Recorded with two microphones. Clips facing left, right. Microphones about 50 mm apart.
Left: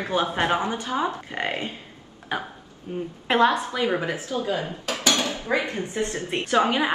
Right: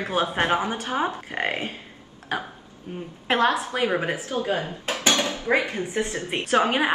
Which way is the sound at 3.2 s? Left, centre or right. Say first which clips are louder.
Left 1 dB; centre.